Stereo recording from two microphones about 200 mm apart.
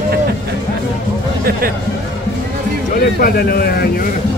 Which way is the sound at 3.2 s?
50° left (ahead or behind).